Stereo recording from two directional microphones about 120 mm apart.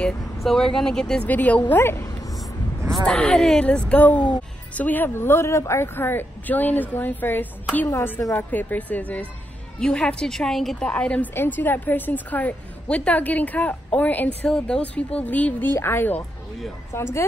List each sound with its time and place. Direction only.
0.0 s a woman's voice: 5° left (ahead or behind); by 2.0 s 20° left (ahead or behind)
3.1 s a woman's voice: 10° left (ahead or behind); by 17.2 s 25° left (ahead or behind)